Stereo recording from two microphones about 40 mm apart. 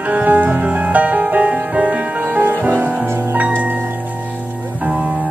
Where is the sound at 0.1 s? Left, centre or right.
Right.